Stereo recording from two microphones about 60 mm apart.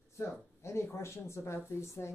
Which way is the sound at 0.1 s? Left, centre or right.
Left.